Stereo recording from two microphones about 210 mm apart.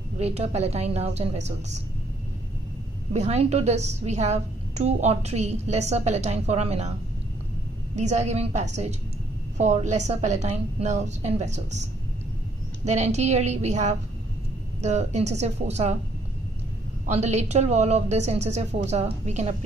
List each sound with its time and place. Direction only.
0.2 s a woman's voice: 30° right (ahead or behind)
3.1 s a woman's voice: 30° right (ahead or behind)
7.9 s a woman's voice: 35° right (ahead or behind)
17.0 s a woman's voice: 30° right (ahead or behind)